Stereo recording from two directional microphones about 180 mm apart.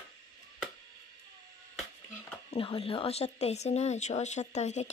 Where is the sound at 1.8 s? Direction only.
5° left (ahead or behind).